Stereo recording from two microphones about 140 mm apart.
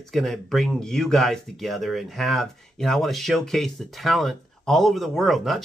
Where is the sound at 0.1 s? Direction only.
Centre (ahead or behind).